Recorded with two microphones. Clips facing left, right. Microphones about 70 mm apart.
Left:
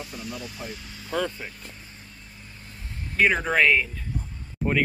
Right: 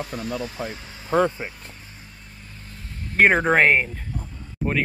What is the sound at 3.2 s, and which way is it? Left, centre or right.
Speech, right.